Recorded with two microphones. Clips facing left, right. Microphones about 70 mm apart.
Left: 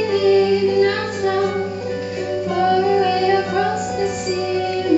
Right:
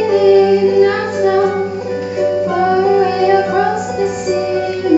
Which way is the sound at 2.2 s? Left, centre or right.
Right.